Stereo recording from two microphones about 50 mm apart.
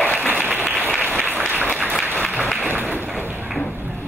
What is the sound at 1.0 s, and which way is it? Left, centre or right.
Applause, right.